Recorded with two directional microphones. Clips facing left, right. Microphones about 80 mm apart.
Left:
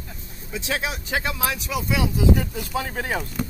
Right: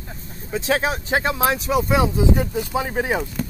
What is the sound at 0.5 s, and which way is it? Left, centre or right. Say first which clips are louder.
Speech: right 6 dB; right.